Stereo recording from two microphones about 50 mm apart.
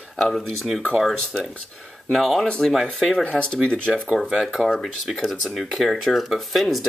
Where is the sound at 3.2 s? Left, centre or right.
Centre.